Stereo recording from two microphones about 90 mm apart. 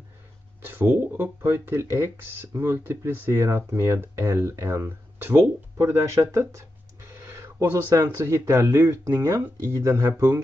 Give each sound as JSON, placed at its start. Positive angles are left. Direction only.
{"t": 0.7, "sound": "speech", "side_deg": -25}